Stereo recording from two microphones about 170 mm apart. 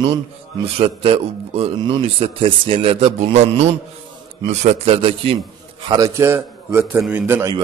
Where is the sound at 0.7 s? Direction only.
35° right (ahead or behind).